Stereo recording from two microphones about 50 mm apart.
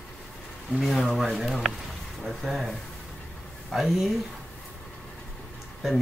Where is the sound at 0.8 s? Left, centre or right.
Centre.